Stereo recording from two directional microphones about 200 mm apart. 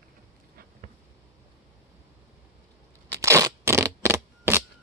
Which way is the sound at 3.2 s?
15° right (ahead or behind).